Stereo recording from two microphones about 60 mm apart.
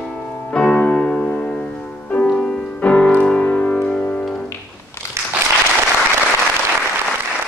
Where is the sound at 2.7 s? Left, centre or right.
Left.